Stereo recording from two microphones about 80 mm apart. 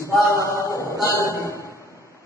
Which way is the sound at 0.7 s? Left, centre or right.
Left.